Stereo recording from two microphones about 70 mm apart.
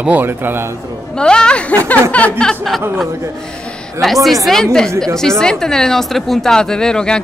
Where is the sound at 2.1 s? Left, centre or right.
Left.